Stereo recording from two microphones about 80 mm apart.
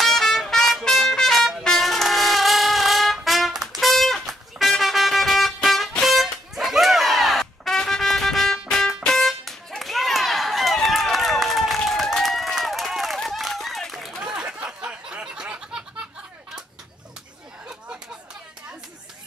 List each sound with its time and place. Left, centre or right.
0.0 s trumpet: centre
6.5 s music: centre